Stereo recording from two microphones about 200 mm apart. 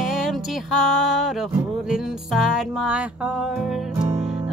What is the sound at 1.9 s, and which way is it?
Music, centre (ahead or behind).